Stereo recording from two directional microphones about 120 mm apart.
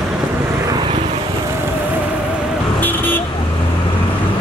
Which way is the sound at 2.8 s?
15° left (ahead or behind).